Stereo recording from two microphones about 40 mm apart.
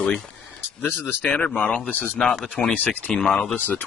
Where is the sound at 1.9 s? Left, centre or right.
Left.